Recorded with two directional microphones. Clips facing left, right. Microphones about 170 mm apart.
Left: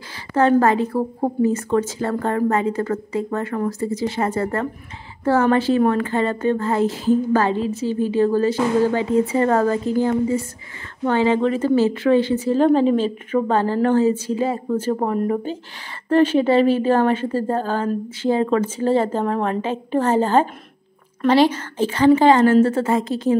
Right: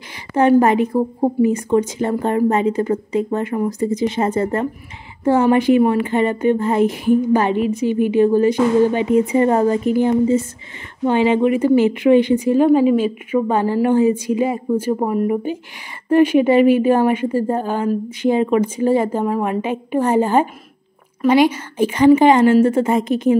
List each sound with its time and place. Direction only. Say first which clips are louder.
0.3 s a woman's voice: right 3 dB; 15° right (ahead or behind)